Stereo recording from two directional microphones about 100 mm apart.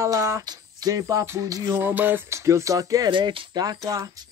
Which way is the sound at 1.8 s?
20° right (ahead or behind).